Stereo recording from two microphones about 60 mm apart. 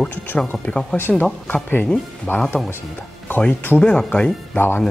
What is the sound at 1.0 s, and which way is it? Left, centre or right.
Speech, left.